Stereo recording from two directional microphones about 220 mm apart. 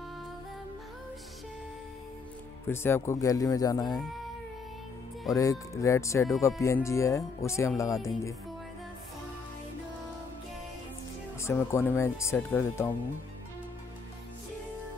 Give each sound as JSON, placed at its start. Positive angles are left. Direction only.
{"t": 2.7, "sound": "speech", "side_deg": 10}
{"t": 5.3, "sound": "speech", "side_deg": 15}
{"t": 11.4, "sound": "speech", "side_deg": 10}